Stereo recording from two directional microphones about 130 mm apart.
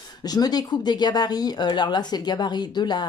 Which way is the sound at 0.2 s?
30° left (ahead or behind).